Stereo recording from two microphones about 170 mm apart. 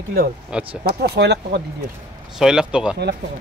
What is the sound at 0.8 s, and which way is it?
Speech, 65° right (ahead or behind).